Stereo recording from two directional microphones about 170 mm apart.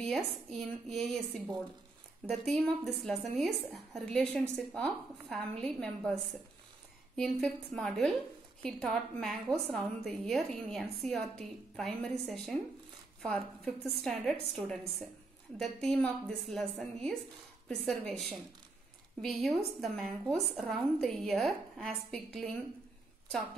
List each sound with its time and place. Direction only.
0.0 s speech: centre (ahead or behind)
7.2 s speech: centre (ahead or behind)
19.2 s speech: centre (ahead or behind)